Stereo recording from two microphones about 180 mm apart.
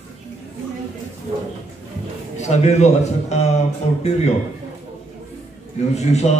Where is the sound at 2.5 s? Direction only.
40° left (ahead or behind).